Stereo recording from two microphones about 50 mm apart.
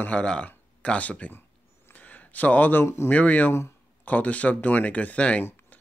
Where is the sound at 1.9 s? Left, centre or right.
Left.